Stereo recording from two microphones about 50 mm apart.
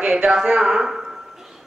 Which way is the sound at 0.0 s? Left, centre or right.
Centre.